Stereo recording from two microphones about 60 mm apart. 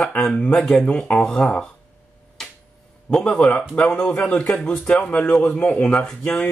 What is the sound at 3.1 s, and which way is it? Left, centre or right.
Speech, centre.